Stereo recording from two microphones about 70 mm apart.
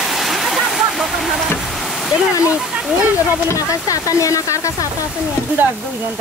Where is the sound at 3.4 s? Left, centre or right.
Left.